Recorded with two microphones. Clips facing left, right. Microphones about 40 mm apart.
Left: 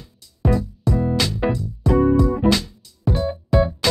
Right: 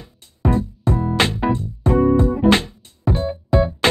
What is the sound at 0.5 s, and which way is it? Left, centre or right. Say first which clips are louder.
Music: right 1 dB; right.